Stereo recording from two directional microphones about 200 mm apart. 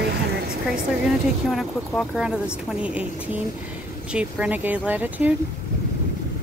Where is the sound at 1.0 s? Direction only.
Centre (ahead or behind).